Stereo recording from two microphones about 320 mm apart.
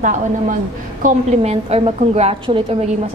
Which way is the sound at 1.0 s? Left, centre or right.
Right.